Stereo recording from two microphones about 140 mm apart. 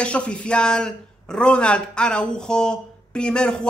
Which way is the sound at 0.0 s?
10° left (ahead or behind).